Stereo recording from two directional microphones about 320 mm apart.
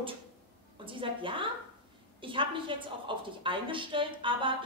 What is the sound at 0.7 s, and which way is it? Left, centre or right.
A woman's voice, centre.